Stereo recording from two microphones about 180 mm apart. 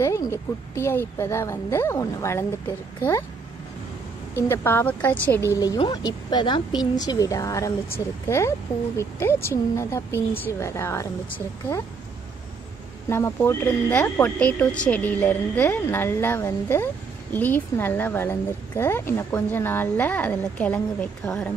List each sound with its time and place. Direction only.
0.0 s speech: 15° left (ahead or behind)
4.4 s speech: 15° left (ahead or behind)
5.8 s a woman's voice: 20° left (ahead or behind)
13.1 s speech: 15° left (ahead or behind)